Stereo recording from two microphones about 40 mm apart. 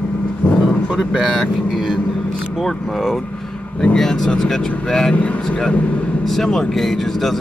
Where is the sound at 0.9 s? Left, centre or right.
Centre.